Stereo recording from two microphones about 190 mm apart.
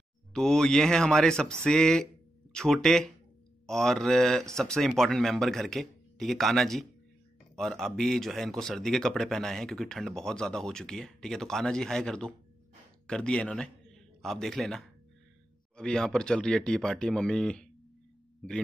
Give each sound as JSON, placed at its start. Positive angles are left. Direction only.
{"t": 0.3, "sound": "speech", "side_deg": 5}